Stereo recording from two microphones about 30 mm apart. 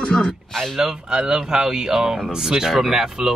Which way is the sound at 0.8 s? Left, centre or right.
Right.